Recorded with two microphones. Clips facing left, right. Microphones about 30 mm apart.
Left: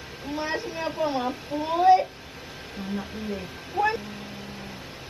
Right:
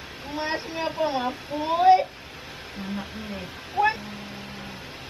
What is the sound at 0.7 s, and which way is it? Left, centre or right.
Speech, right.